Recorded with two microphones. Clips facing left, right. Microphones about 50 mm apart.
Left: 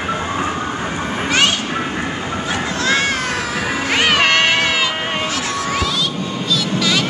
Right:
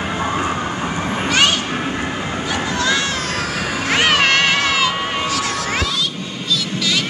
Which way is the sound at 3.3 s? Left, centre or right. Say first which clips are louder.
Left 1 dB; left.